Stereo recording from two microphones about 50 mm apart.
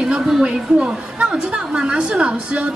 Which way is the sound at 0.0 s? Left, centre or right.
Centre.